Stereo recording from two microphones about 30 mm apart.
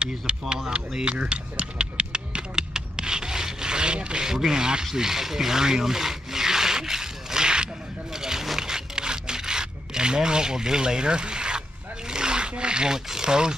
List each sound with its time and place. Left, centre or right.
0.3 s speech: right
1.0 s a sound: right
2.7 s wood: right
4.3 s speech: centre
4.9 s rub: centre
8.1 s wild animals: centre
8.5 s scrape: right
12.1 s rub: right
12.9 s speech: right